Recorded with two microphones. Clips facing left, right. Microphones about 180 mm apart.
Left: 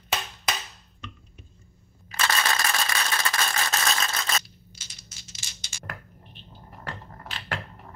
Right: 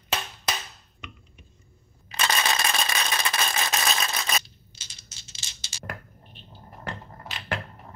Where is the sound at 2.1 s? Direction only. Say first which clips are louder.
Even; 20° right (ahead or behind).